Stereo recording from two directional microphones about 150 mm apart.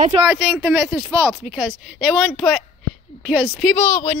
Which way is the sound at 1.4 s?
10° right (ahead or behind).